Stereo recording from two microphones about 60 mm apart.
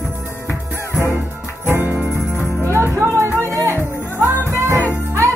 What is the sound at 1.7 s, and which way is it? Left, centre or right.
Music, right.